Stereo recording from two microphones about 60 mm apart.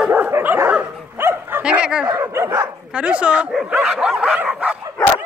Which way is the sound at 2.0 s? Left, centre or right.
Right.